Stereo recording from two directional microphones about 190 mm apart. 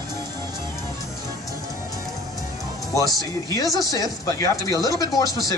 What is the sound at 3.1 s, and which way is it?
Speech, 20° left (ahead or behind).